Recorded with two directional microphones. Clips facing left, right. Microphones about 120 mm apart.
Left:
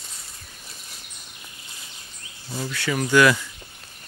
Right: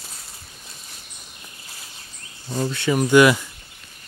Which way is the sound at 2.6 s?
25° right (ahead or behind).